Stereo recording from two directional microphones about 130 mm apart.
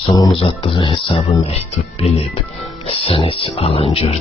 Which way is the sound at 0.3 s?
45° left (ahead or behind).